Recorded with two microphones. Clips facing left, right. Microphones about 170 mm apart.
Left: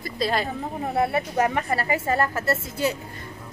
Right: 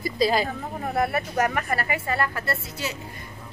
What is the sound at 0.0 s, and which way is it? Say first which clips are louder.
Speech: right 3 dB; centre (ahead or behind).